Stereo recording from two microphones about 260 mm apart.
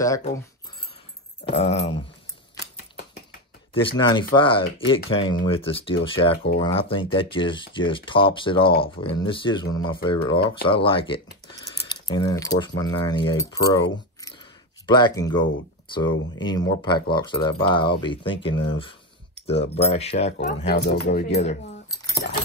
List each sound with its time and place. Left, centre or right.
3.7 s speech: centre
14.2 s a sound: centre
15.9 s speech: centre; by 21.2 s left
21.3 s speech: left
21.9 s keys jangling: centre